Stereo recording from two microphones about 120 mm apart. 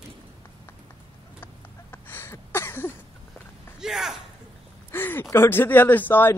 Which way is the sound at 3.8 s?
5° right (ahead or behind).